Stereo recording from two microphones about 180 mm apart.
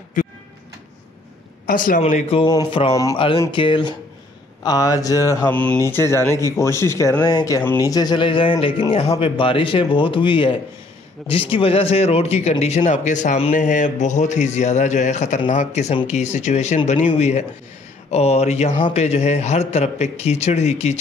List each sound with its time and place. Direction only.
0.2 s speech: 45° left (ahead or behind)
1.7 s speech: 50° left (ahead or behind)
2.0 s a man's voice: 40° left (ahead or behind)